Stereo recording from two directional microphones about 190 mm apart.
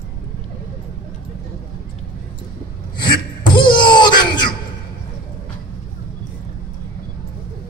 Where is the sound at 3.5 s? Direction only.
25° left (ahead or behind).